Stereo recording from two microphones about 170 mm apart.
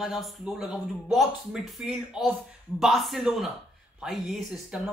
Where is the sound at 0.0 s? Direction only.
Centre (ahead or behind).